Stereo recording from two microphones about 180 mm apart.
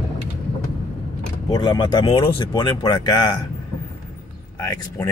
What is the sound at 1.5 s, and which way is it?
Speech, 20° left (ahead or behind).